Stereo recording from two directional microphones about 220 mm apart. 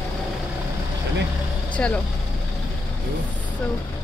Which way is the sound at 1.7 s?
5° left (ahead or behind).